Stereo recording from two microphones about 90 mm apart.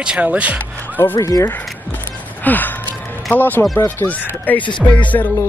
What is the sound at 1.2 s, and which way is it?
Speech, 35° left (ahead or behind).